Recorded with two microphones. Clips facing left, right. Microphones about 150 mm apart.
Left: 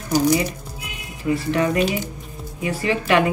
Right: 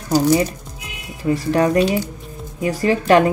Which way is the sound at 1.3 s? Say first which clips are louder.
Right 4 dB; 40° right (ahead or behind).